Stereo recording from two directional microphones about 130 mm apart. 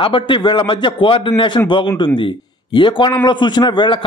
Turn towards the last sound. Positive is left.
turn(degrees=35)  # may be behind; listen again after turning